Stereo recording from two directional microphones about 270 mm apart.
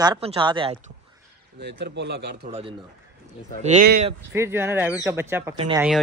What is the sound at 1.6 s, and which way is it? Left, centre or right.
Speech, right.